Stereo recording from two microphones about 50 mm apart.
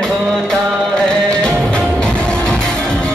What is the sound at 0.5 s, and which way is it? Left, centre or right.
Music, centre.